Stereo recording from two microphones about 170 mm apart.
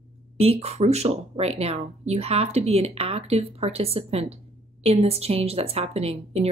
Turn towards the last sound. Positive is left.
turn(degrees=-35)  # may be behind; listen again after turning